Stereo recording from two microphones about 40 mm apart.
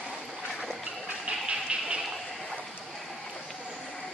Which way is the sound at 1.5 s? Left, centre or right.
Right.